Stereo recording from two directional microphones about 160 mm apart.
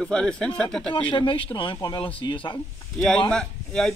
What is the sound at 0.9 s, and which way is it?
Speech, 30° left (ahead or behind).